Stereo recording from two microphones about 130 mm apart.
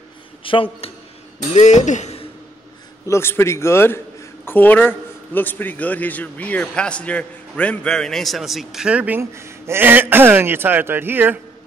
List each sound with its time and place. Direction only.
0.4 s a man's voice: 45° left (ahead or behind)
1.5 s speech: 65° left (ahead or behind)
3.1 s a man's voice: 20° left (ahead or behind); by 11.3 s 15° right (ahead or behind)